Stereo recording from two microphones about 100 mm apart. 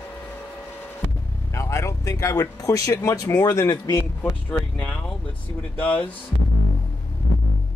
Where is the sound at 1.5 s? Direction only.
30° left (ahead or behind).